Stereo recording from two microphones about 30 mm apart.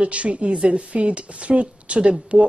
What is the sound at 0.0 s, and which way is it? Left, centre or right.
A woman's voice, right.